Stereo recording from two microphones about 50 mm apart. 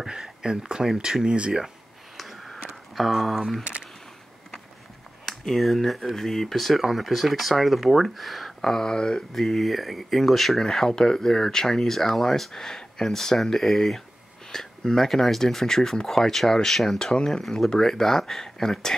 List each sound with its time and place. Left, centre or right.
0.0 s speech: centre
2.1 s a sound: centre
5.2 s speech: centre
9.3 s speech: centre